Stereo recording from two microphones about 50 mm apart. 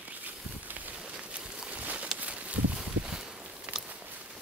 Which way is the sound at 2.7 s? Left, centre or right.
Centre.